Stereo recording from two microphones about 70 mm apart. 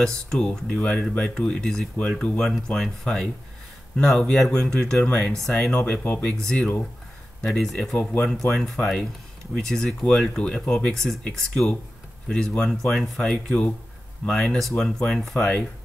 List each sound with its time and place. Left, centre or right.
0.0 s speech: centre
5.9 s speech: centre